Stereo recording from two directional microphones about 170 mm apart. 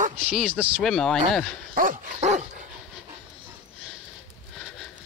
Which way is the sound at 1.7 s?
55° right (ahead or behind).